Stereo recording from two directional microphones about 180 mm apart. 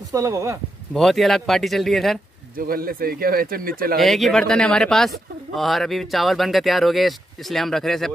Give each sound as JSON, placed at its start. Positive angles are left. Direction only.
{"t": 0.1, "sound": "speech", "side_deg": -15}
{"t": 0.9, "sound": "speech", "side_deg": 0}
{"t": 2.5, "sound": "speech", "side_deg": -55}
{"t": 4.0, "sound": "speech", "side_deg": 0}